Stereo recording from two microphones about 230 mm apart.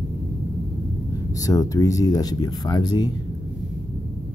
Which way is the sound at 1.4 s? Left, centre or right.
Centre.